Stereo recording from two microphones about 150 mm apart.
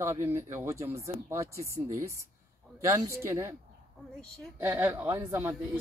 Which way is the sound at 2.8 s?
20° right (ahead or behind).